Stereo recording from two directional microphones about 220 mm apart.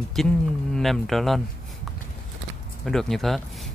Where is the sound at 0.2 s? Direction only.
Centre (ahead or behind).